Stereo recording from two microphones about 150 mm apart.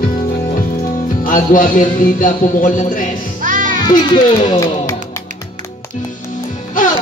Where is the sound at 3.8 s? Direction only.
25° left (ahead or behind).